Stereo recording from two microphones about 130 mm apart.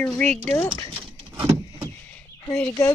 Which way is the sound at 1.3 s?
25° right (ahead or behind).